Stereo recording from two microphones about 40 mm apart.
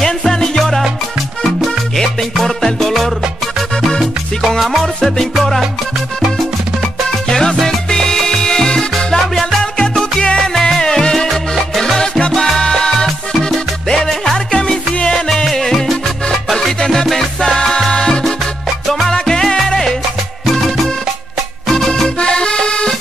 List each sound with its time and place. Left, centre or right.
0.3 s salsa music: centre
2.3 s music: centre
4.6 s music: centre
7.6 s salsa music: centre
9.6 s salsa music: centre
12.3 s music: centre
14.5 s music: centre
15.2 s music: centre
18.9 s music: centre
19.1 s music: centre
20.5 s music: centre
22.2 s accordion: left